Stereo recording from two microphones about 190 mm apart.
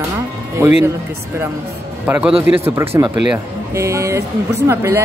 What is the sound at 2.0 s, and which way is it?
A man's voice, 5° right (ahead or behind).